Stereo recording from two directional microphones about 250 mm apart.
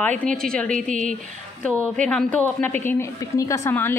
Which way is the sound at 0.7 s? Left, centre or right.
Right.